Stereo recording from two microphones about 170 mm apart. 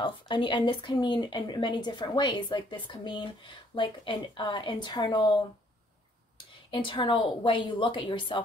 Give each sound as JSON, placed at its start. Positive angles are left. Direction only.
{"t": 0.0, "sound": "speech", "side_deg": 30}
{"t": 6.7, "sound": "speech", "side_deg": 30}